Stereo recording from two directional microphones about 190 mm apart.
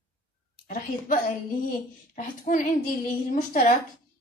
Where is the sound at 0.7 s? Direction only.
45° left (ahead or behind).